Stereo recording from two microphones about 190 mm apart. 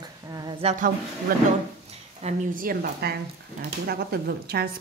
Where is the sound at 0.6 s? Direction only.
35° right (ahead or behind).